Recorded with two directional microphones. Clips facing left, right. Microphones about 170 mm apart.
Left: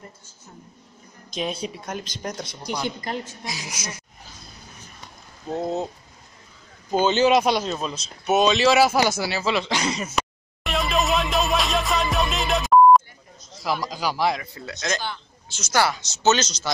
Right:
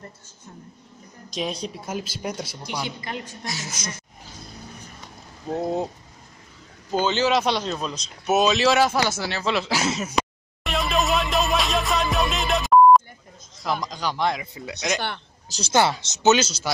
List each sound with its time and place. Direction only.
1.3 s speech: centre (ahead or behind)
3.4 s speech: 15° left (ahead or behind)
5.5 s speech: 10° right (ahead or behind)
6.9 s speech: 15° left (ahead or behind); by 10.1 s 5° right (ahead or behind)
10.6 s music: centre (ahead or behind)
13.6 s speech: 5° left (ahead or behind)
14.4 s speech: 15° right (ahead or behind)
15.4 s a woman's voice: 35° right (ahead or behind)
15.7 s speech: 25° right (ahead or behind)
16.2 s speech: 10° right (ahead or behind)